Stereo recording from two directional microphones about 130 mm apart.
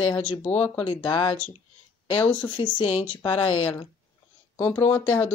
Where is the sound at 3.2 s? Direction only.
40° left (ahead or behind).